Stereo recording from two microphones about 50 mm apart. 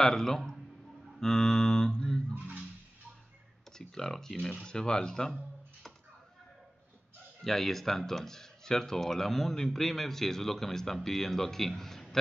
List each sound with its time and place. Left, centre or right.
0.0 s speech: centre
2.3 s music: right
3.7 s speech: centre
7.4 s speech: centre